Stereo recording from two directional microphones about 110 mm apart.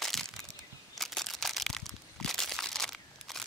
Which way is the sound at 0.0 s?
Centre (ahead or behind).